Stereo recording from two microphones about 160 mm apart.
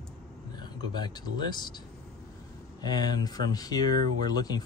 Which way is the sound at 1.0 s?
25° left (ahead or behind).